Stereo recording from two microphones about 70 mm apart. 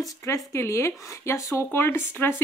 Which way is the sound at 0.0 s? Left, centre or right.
Left.